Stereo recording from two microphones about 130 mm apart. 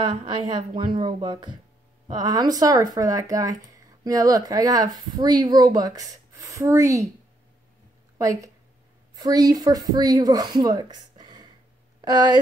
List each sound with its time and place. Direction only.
0.3 s speech: 35° right (ahead or behind)
8.2 s speech: 25° right (ahead or behind)